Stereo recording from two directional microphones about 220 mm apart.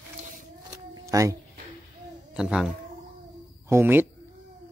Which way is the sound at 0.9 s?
15° right (ahead or behind).